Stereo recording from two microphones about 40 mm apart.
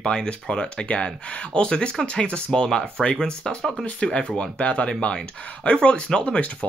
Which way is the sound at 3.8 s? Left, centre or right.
Left.